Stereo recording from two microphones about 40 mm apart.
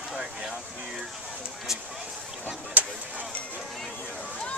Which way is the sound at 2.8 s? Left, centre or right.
Right.